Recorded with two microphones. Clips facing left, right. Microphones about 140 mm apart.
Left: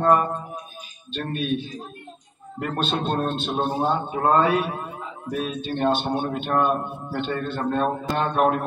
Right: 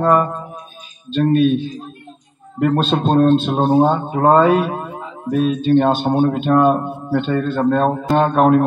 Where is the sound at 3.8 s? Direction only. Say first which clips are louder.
Right 8 dB; 90° right.